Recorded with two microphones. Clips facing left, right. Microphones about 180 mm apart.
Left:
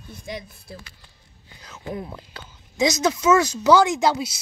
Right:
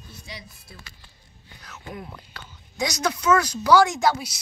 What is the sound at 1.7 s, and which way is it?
Speech, 30° left (ahead or behind).